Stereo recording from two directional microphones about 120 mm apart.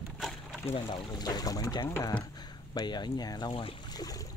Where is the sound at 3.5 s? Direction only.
50° left (ahead or behind).